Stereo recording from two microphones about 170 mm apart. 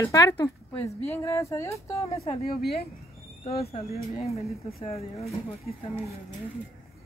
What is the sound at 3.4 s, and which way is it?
Speech, 35° left (ahead or behind).